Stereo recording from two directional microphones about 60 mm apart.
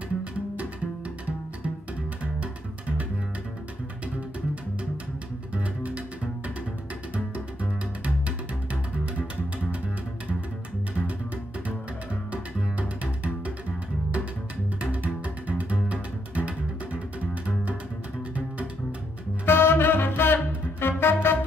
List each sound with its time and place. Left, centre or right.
5.5 s music: right
12.3 s double bass: right
14.8 s music: right
19.4 s music: left